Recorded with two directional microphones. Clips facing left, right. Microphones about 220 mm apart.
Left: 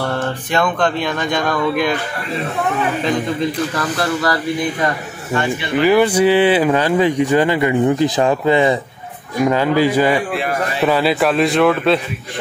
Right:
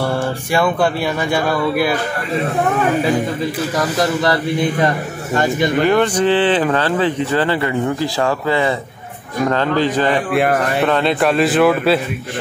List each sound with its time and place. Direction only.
0.0 s a sound: 10° right (ahead or behind)
3.0 s a sound: 10° right (ahead or behind)
5.3 s speech: 40° right (ahead or behind)
5.8 s speech: 5° left (ahead or behind)
10.3 s speech: 55° right (ahead or behind)
10.9 s a man's voice: 5° left (ahead or behind)